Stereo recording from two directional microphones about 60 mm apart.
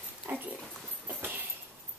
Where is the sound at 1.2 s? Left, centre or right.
Right.